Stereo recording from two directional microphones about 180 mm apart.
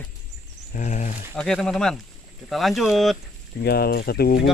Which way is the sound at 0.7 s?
40° left (ahead or behind).